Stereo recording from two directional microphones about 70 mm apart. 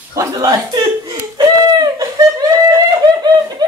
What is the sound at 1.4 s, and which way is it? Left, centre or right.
Laughter, right.